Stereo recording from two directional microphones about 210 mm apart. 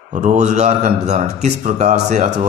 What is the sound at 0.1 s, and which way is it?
A man's voice, 35° right (ahead or behind).